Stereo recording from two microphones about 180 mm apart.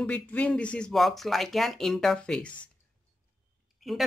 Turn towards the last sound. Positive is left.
turn(degrees=0)  # may be behind; listen again after turning